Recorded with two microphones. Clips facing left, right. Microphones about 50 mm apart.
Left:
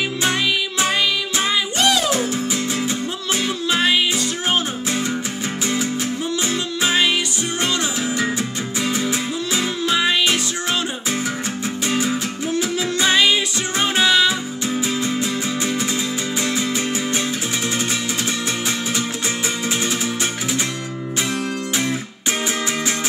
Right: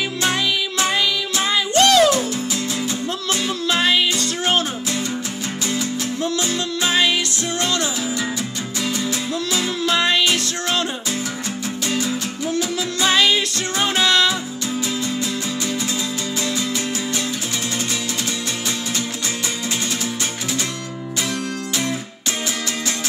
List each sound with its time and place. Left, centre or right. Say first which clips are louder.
0.2 s music: even; centre
3.4 s music: even; centre
5.7 s music: left 1 dB; centre
11.9 s music: left 2 dB; left
14.7 s music: left 2 dB; left